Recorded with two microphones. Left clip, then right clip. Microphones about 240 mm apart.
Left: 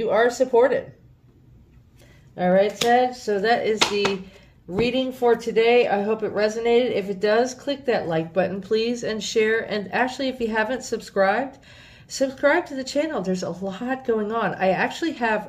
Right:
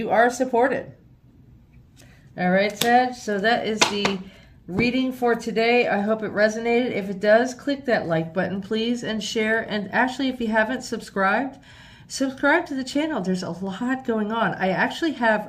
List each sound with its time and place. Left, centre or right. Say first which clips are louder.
0.0 s speech: even; centre
2.3 s speech: left 2 dB; centre